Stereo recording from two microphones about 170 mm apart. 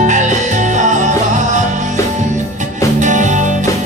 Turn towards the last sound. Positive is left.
turn(degrees=-45)  # may be behind; listen again after turning